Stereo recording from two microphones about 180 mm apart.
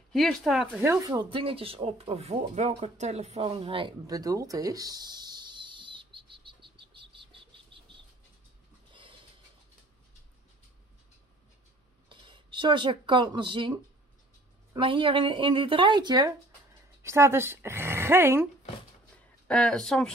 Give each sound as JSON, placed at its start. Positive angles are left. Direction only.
{"t": 0.1, "sound": "speech", "side_deg": 0}
{"t": 0.8, "sound": "speech", "side_deg": -15}
{"t": 8.9, "sound": "a sound", "side_deg": -30}
{"t": 12.1, "sound": "speech", "side_deg": -25}
{"t": 19.4, "sound": "speech", "side_deg": 5}